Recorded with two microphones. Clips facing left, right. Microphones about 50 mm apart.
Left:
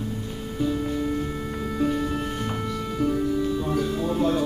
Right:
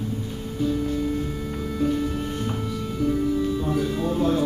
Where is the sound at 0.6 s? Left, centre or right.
Centre.